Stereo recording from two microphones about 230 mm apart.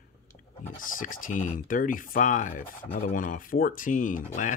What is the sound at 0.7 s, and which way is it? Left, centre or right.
Speech, left.